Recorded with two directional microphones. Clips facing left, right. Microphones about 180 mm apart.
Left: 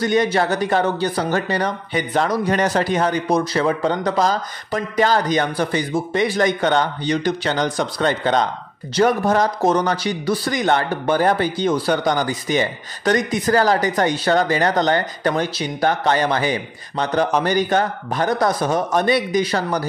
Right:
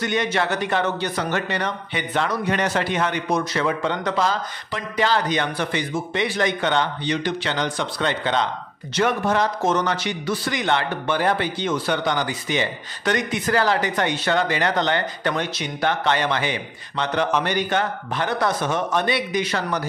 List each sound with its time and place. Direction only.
0.0 s speech: 35° left (ahead or behind)